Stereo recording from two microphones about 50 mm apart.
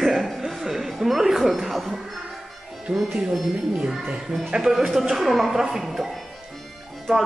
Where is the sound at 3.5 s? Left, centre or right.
Centre.